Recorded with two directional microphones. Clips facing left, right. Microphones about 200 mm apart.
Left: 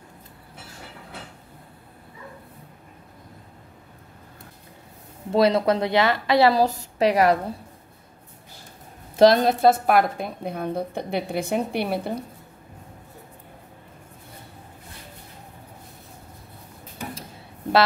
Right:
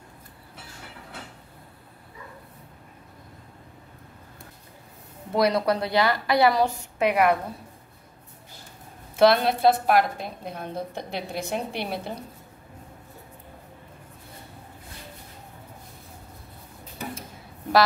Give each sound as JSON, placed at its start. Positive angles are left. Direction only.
{"t": 5.3, "sound": "a woman's voice", "side_deg": 25}
{"t": 9.1, "sound": "a woman's voice", "side_deg": 40}